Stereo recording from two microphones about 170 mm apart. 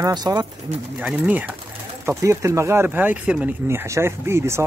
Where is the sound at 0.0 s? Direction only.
20° right (ahead or behind).